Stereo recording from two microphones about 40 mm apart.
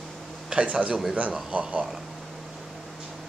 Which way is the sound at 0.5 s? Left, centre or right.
Right.